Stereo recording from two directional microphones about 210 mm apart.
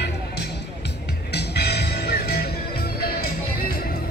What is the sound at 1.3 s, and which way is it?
Music, 50° left (ahead or behind).